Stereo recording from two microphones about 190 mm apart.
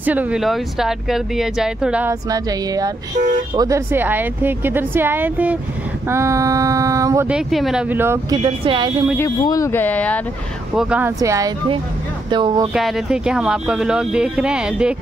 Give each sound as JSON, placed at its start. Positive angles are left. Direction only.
{"t": 0.0, "sound": "speech", "side_deg": -10}
{"t": 2.2, "sound": "music", "side_deg": -20}
{"t": 3.5, "sound": "a woman's voice", "side_deg": -15}
{"t": 7.2, "sound": "a woman's voice", "side_deg": 0}
{"t": 9.4, "sound": "speech", "side_deg": 20}
{"t": 10.8, "sound": "a woman's voice", "side_deg": -5}
{"t": 12.3, "sound": "music", "side_deg": -25}
{"t": 12.7, "sound": "speech", "side_deg": 0}